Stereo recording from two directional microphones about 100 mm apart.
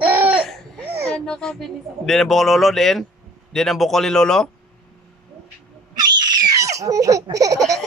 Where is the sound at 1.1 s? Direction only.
5° left (ahead or behind).